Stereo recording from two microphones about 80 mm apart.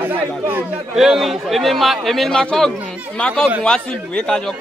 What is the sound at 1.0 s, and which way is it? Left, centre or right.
A man's voice, centre.